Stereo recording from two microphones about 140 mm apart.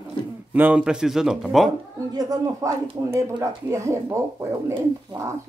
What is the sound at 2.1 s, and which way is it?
Speech, 25° right (ahead or behind).